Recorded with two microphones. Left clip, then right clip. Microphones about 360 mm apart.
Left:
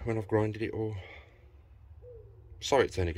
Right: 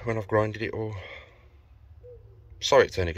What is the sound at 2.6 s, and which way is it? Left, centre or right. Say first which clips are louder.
Speech: right 6 dB; centre.